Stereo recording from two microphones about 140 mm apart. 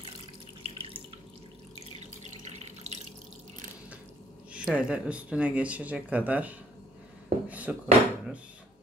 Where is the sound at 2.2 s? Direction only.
55° right (ahead or behind).